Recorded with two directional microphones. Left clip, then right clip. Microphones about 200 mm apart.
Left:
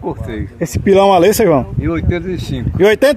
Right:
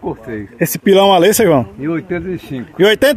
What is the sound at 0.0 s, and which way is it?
Speech, 15° left (ahead or behind).